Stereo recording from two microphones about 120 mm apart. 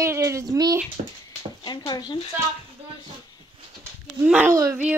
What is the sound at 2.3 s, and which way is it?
Speech, 15° right (ahead or behind).